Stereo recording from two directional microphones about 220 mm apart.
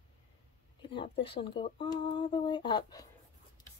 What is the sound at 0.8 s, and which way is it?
Speech, 20° left (ahead or behind).